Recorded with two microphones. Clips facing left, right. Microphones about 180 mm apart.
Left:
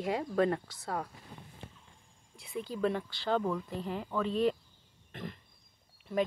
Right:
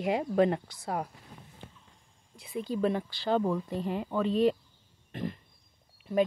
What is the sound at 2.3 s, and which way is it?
Speech, centre (ahead or behind).